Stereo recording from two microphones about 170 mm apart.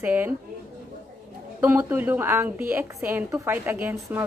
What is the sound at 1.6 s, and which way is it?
A woman's voice, 10° right (ahead or behind).